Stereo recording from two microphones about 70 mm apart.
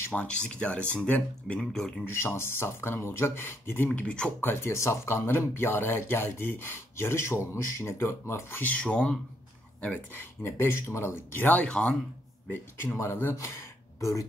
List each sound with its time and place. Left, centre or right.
0.1 s speech: centre
2.0 s speech: left
3.9 s speech: centre
4.4 s speech: left
8.6 s speech: centre
10.1 s speech: left
11.6 s speech: centre
12.9 s speech: left